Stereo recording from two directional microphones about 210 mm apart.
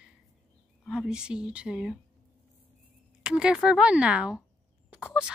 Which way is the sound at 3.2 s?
5° right (ahead or behind).